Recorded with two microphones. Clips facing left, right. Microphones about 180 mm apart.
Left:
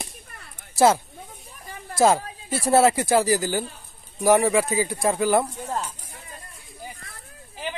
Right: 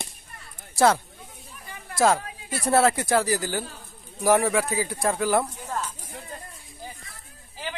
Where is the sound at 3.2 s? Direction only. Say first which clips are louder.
Left 4 dB; 5° left (ahead or behind).